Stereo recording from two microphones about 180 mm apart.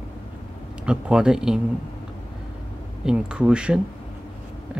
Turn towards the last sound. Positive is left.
turn(degrees=-5)  # may be behind; listen again after turning